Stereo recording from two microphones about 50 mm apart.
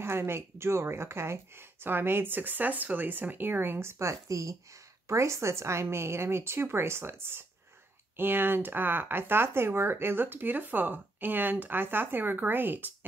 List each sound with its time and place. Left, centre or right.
0.0 s speech: right
4.0 s speech: right
5.0 s a woman's voice: right